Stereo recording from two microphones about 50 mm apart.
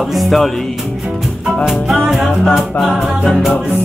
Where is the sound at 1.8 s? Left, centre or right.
Centre.